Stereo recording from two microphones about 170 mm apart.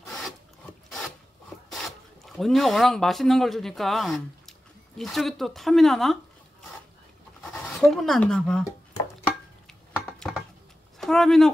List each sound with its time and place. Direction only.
1.7 s speech: centre (ahead or behind)
7.6 s speech: centre (ahead or behind)
10.1 s a sound: centre (ahead or behind)
11.0 s speech: centre (ahead or behind)